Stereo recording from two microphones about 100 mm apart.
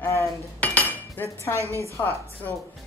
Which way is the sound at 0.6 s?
15° left (ahead or behind).